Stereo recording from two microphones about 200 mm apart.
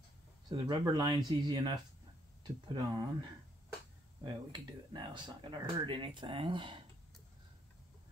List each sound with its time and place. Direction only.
0.5 s speech: 20° right (ahead or behind)
4.2 s speech: 25° right (ahead or behind)